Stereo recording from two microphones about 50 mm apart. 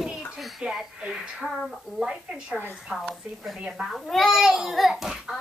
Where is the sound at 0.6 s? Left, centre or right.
Centre.